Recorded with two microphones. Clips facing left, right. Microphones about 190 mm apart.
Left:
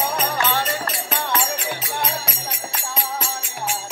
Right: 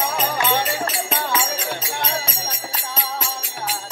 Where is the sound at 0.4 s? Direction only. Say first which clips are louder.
Right 3 dB; 15° right (ahead or behind).